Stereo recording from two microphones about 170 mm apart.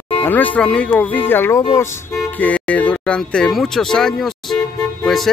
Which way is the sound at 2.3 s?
10° left (ahead or behind).